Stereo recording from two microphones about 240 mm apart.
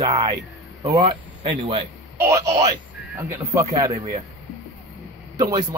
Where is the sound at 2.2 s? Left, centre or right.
Centre.